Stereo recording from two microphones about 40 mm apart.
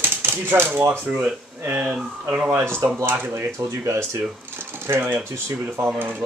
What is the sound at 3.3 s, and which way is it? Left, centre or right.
Speech, right.